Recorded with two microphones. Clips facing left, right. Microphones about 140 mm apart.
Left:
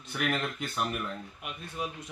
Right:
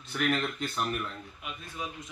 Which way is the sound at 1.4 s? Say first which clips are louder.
Left 2 dB; 65° left (ahead or behind).